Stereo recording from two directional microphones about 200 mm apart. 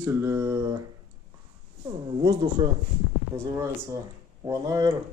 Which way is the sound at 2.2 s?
20° right (ahead or behind).